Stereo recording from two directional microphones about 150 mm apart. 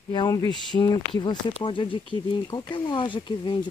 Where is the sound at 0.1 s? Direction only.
30° left (ahead or behind).